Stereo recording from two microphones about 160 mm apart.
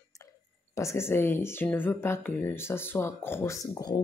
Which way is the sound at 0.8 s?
15° left (ahead or behind).